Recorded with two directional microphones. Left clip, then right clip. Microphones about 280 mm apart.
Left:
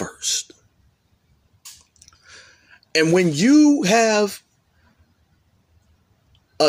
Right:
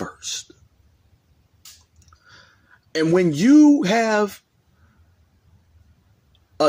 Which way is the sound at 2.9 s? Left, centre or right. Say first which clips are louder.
Left 2 dB; centre.